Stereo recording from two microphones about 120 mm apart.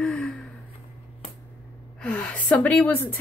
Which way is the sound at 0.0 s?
5° left (ahead or behind).